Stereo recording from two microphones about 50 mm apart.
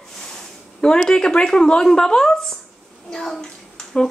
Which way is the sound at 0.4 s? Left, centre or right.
Centre.